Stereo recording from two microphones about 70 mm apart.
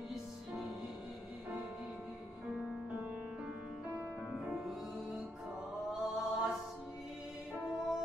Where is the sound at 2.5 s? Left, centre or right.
Centre.